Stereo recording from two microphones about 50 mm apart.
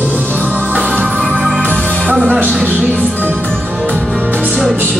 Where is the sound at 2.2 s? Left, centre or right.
Right.